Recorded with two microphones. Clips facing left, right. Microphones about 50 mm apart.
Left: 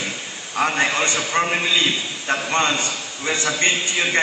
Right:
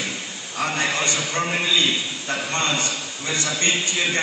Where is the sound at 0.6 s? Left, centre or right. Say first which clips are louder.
Left 4 dB; left.